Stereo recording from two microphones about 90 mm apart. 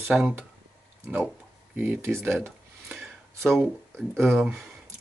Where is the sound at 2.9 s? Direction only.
10° right (ahead or behind).